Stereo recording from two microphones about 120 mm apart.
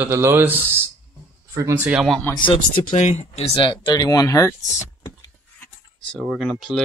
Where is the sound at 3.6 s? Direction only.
40° left (ahead or behind).